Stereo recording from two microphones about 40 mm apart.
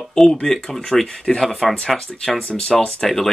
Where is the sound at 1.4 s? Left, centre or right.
Centre.